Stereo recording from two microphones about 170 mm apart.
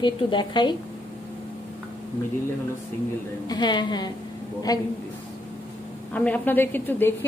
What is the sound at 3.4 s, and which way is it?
A woman's voice, 25° left (ahead or behind).